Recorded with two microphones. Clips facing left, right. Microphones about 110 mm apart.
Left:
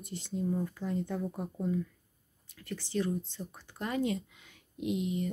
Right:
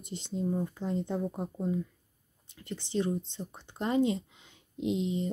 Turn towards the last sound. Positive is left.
turn(degrees=-25)  # may be behind; listen again after turning